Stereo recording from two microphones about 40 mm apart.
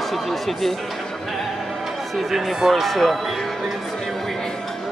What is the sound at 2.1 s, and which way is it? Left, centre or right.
Speech, centre.